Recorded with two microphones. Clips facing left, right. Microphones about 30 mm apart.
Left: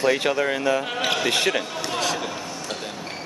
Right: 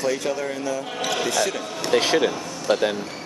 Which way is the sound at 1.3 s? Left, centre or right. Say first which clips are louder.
Left 2 dB; left.